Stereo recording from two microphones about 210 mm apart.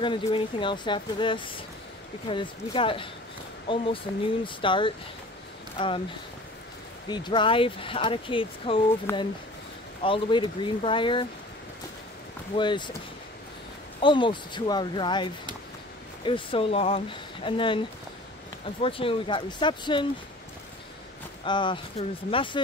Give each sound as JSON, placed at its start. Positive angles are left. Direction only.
{"t": 0.0, "sound": "speech", "side_deg": 25}
{"t": 7.1, "sound": "speech", "side_deg": 20}
{"t": 9.1, "sound": "speech", "side_deg": 10}
{"t": 10.0, "sound": "speech", "side_deg": 25}
{"t": 12.5, "sound": "speech", "side_deg": 20}
{"t": 14.0, "sound": "speech", "side_deg": 20}
{"t": 21.5, "sound": "speech", "side_deg": 20}